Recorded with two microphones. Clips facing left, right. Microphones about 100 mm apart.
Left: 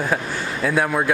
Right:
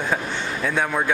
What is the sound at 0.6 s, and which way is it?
Speech, 5° left (ahead or behind).